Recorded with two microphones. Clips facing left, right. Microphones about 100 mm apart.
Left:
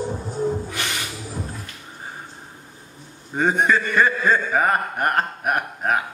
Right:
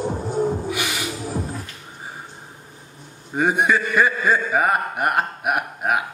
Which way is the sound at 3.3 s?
10° right (ahead or behind).